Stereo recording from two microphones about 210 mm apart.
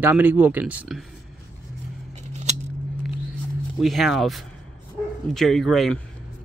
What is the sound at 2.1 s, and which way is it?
Scissors, 35° right (ahead or behind).